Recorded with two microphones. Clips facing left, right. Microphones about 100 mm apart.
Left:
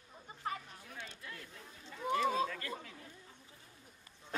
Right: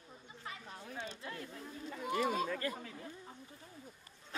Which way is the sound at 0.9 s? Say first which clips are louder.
Right 4 dB; 25° right (ahead or behind).